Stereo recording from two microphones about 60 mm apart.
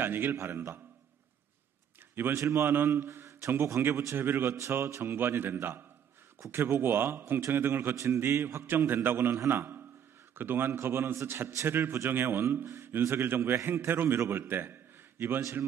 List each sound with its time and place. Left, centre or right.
0.0 s a man's voice: right
2.3 s a man's voice: right
3.1 s a man's voice: right
4.1 s a man's voice: right
7.9 s a man's voice: right
8.2 s a man's voice: right